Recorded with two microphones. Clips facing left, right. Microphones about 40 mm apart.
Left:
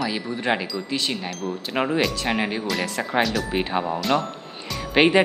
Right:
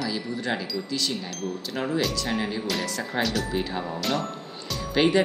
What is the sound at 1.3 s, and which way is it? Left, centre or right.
Speech, centre.